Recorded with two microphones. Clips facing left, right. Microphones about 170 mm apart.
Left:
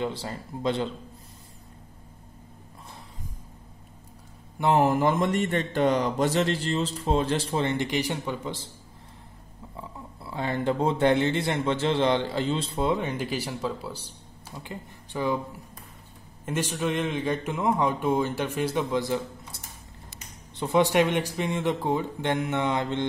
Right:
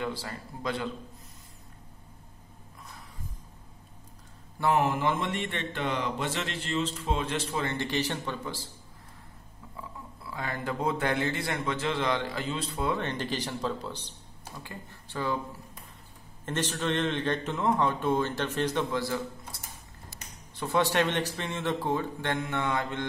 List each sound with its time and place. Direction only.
0.0 s speech: 25° left (ahead or behind)
4.6 s speech: 30° left (ahead or behind)
7.7 s a man's voice: 15° left (ahead or behind)
9.8 s speech: 25° left (ahead or behind)
12.9 s a man's voice: 10° left (ahead or behind)
14.6 s speech: 20° left (ahead or behind)
16.4 s a man's voice: 10° left (ahead or behind)